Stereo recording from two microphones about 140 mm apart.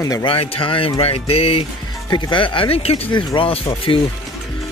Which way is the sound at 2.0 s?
35° left (ahead or behind).